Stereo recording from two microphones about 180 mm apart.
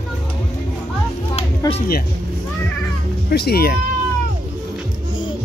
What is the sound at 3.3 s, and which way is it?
Music, 60° left (ahead or behind).